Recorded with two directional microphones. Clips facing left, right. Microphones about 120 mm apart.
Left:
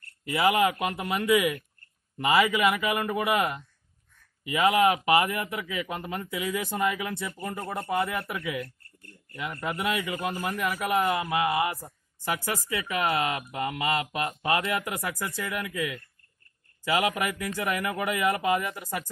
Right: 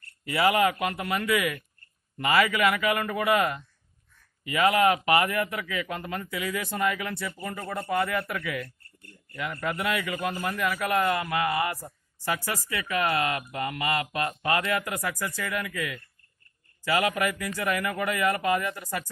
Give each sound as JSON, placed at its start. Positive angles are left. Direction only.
{"t": 0.2, "sound": "a man's voice", "side_deg": 15}